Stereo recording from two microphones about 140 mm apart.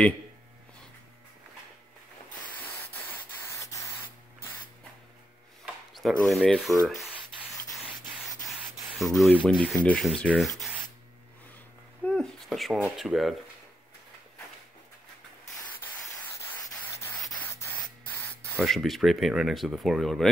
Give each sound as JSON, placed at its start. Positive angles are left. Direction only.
{"t": 5.9, "sound": "speech", "side_deg": 0}
{"t": 8.3, "sound": "sanding", "side_deg": 0}
{"t": 9.3, "sound": "speech", "side_deg": 10}
{"t": 12.0, "sound": "speech", "side_deg": 5}
{"t": 16.3, "sound": "rub", "side_deg": 15}
{"t": 17.4, "sound": "spray", "side_deg": 15}
{"t": 18.6, "sound": "speech", "side_deg": 0}